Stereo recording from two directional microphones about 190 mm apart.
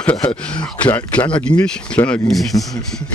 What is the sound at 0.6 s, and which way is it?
Speech, 5° left (ahead or behind).